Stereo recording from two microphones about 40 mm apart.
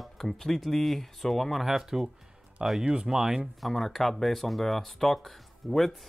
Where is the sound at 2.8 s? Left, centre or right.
Right.